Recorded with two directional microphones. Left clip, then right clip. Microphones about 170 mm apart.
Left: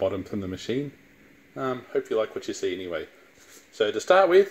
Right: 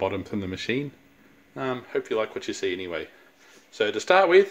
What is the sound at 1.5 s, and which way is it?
Speech, 15° right (ahead or behind).